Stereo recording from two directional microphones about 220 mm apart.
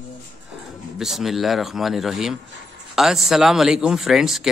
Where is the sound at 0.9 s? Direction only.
Centre (ahead or behind).